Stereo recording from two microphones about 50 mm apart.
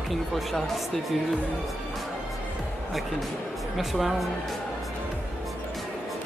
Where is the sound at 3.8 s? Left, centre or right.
Centre.